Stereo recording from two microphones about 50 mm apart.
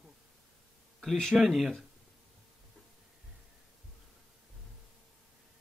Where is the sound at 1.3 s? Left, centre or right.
Centre.